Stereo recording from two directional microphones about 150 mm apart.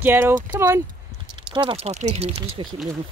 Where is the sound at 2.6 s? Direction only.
35° right (ahead or behind).